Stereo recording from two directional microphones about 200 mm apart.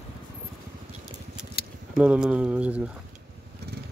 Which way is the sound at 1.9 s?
5° right (ahead or behind).